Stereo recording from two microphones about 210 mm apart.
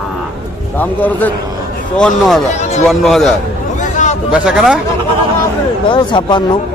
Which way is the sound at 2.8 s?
Centre (ahead or behind).